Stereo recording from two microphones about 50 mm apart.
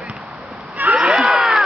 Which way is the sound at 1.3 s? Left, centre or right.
Centre.